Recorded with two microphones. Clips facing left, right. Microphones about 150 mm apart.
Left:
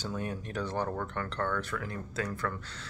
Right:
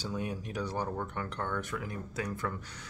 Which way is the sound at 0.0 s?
10° right (ahead or behind).